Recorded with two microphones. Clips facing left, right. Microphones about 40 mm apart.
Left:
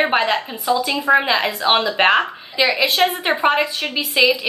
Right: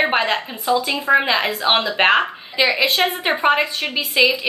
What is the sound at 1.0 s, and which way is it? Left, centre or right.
Speech, centre.